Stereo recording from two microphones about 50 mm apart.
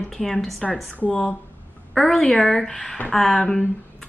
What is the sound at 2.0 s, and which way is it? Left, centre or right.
A woman's voice, centre.